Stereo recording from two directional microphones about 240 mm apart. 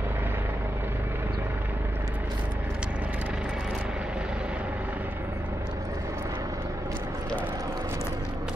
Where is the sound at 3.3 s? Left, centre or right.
Centre.